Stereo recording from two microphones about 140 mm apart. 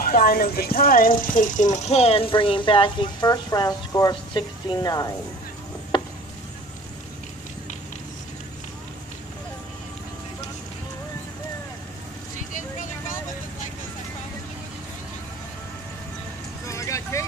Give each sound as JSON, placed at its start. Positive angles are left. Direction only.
{"t": 0.0, "sound": "speech", "side_deg": 90}
{"t": 5.9, "sound": "a sound", "side_deg": 35}
{"t": 12.4, "sound": "vehicle", "side_deg": 65}
{"t": 16.6, "sound": "vehicle", "side_deg": 20}